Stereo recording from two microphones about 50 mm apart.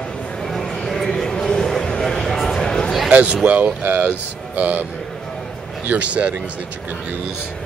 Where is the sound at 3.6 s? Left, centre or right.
Right.